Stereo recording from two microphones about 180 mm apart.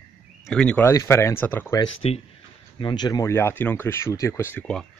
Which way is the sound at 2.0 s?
35° left (ahead or behind).